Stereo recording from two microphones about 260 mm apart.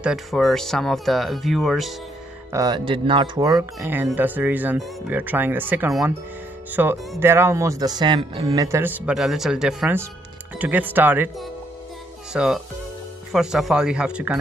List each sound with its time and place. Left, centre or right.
0.0 s speech: centre
2.5 s speech: centre